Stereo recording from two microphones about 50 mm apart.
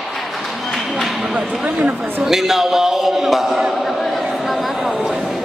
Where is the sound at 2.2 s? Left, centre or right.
Centre.